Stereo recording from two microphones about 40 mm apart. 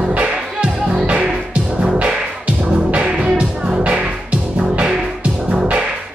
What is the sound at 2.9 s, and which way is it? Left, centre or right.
Music, right.